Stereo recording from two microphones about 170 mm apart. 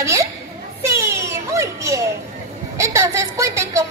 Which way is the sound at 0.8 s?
15° right (ahead or behind).